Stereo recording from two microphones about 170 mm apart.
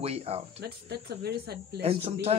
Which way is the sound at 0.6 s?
70° right (ahead or behind).